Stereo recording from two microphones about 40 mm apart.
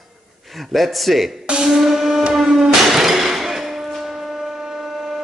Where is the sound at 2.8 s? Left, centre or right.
Centre.